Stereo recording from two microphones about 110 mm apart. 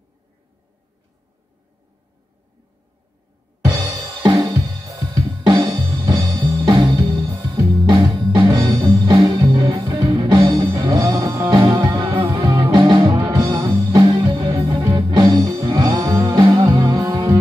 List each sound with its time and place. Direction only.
3.6 s drum kit: 40° right (ahead or behind)
10.0 s music: 40° right (ahead or behind)
11.6 s music: 45° right (ahead or behind)
16.6 s music: 30° right (ahead or behind)